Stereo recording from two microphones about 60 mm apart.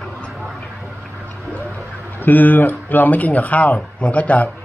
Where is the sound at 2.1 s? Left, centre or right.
Left.